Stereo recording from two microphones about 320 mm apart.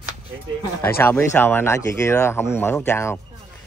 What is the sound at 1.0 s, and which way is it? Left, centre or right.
Speech, centre.